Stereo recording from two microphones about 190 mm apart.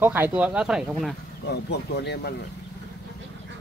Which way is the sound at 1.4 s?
60° left (ahead or behind).